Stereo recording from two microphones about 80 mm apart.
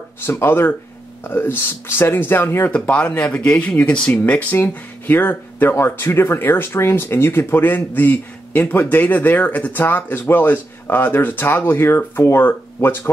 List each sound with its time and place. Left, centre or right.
0.2 s speech: left
2.7 s speech: centre